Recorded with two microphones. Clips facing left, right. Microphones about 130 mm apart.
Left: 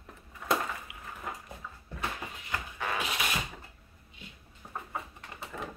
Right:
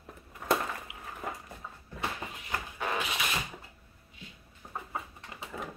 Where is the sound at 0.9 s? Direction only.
25° right (ahead or behind).